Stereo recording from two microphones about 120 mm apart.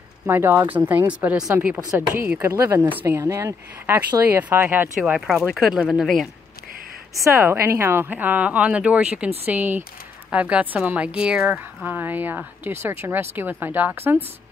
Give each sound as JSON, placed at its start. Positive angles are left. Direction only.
{"t": 0.3, "sound": "a woman's voice", "side_deg": -20}
{"t": 4.9, "sound": "speech", "side_deg": -5}
{"t": 7.2, "sound": "a woman's voice", "side_deg": -20}